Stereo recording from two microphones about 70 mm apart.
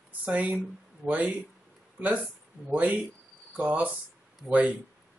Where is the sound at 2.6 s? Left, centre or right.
Right.